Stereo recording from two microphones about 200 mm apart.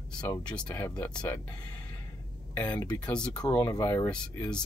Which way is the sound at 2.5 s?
15° left (ahead or behind).